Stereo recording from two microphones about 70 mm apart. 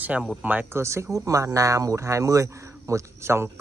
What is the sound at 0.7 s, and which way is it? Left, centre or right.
Speech, right.